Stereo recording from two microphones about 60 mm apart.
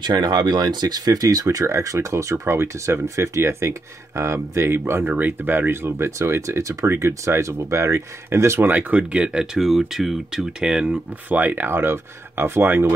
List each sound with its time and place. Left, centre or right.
0.3 s speech: right
1.8 s speech: right
8.6 s speech: right
8.9 s speech: centre
10.9 s speech: right